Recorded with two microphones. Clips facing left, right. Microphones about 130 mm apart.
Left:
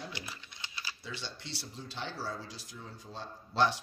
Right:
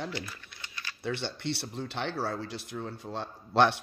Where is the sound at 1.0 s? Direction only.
60° right (ahead or behind).